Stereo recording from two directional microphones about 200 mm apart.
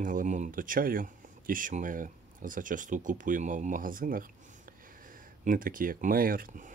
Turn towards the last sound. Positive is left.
turn(degrees=-45)  # may be behind; listen again after turning